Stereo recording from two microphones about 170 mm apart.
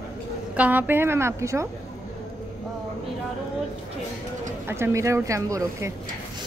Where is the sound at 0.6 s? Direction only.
10° right (ahead or behind).